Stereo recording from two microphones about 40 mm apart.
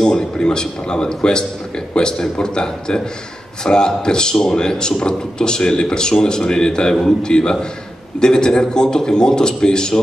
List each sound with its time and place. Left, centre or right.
0.0 s speech: centre